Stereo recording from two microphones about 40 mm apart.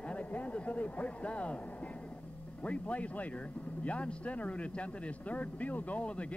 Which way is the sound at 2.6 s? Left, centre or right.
Left.